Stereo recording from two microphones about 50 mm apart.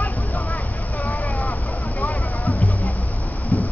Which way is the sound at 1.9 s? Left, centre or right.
Left.